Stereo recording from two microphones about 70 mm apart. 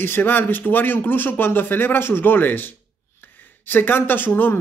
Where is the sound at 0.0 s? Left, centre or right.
Left.